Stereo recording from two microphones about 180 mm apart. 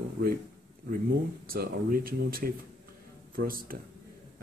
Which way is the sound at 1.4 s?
55° right (ahead or behind).